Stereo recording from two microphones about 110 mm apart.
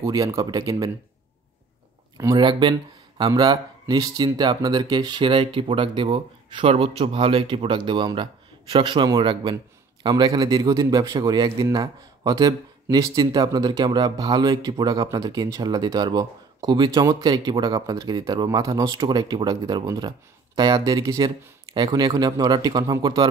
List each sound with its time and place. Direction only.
0.0 s a man's voice: 30° right (ahead or behind)
2.3 s a man's voice: 45° right (ahead or behind)